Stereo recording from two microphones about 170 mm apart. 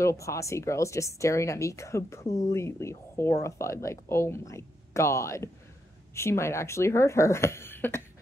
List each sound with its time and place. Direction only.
0.0 s speech: 15° left (ahead or behind)